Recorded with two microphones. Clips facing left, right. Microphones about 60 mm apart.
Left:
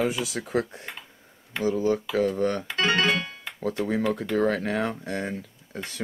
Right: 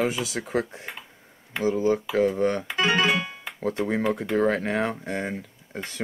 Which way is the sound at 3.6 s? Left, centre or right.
Right.